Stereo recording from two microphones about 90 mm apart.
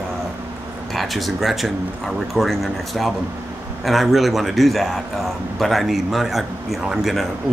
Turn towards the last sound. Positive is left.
turn(degrees=-5)  # may be behind; listen again after turning